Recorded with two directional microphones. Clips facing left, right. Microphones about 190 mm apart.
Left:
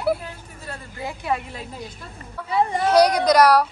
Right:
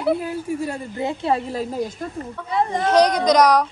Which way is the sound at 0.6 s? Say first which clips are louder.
Right 8 dB; 20° right (ahead or behind).